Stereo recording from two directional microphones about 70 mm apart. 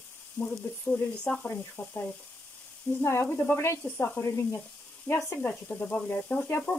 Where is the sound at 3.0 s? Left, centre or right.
Left.